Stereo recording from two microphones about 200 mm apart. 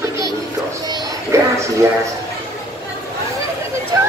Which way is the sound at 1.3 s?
15° right (ahead or behind).